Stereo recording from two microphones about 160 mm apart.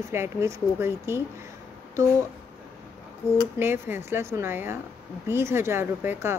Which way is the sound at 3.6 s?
15° right (ahead or behind).